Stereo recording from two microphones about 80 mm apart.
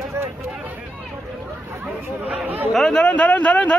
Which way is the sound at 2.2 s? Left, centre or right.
Centre.